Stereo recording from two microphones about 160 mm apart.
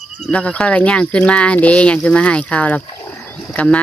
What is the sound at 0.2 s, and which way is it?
Speech, 10° left (ahead or behind).